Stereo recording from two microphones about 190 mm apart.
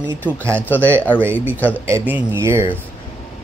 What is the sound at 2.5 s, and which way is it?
Speech, 25° left (ahead or behind).